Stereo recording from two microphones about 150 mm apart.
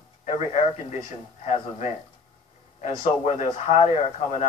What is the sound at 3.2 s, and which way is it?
Speech, 45° left (ahead or behind).